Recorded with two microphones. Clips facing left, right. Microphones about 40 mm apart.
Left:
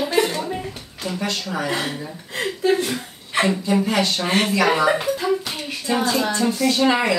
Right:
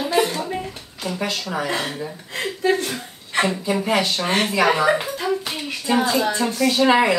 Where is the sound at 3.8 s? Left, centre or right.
Right.